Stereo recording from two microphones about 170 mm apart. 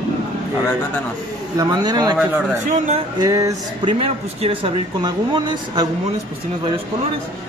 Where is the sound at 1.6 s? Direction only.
25° right (ahead or behind).